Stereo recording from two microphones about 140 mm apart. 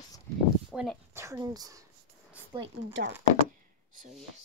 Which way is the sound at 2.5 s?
40° right (ahead or behind).